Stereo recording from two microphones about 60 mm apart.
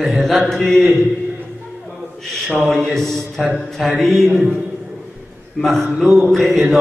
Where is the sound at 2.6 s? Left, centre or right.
Centre.